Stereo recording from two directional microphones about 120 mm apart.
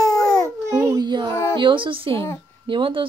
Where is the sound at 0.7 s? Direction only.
25° right (ahead or behind).